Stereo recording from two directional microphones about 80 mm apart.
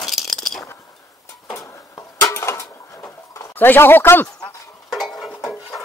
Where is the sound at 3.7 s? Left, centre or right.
Left.